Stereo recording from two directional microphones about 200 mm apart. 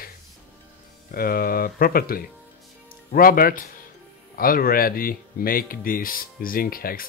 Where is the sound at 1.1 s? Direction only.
45° left (ahead or behind).